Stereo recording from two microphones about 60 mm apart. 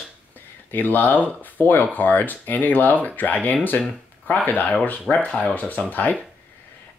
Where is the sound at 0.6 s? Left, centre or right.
Left.